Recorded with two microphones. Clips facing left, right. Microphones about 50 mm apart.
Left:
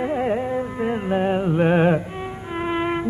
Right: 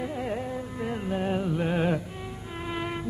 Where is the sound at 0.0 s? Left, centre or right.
Left.